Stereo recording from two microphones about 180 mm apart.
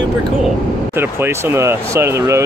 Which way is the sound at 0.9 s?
15° right (ahead or behind).